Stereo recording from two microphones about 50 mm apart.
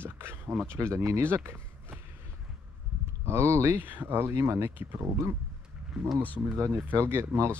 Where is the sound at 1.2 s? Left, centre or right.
Right.